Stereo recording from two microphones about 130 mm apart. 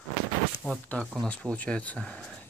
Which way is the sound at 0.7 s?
10° left (ahead or behind).